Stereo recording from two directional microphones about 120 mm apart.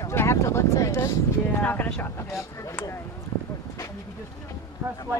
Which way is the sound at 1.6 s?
15° left (ahead or behind).